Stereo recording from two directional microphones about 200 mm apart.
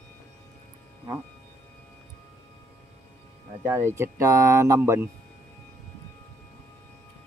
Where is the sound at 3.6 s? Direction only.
10° right (ahead or behind).